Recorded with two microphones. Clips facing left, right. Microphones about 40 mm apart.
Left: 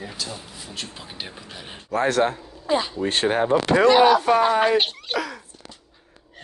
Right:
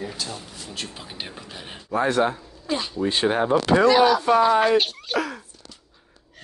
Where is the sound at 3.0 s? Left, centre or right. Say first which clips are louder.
Even; left.